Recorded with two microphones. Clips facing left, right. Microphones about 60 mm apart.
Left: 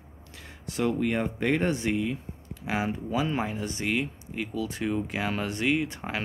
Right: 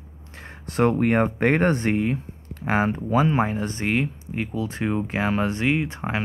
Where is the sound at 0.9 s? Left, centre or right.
Right.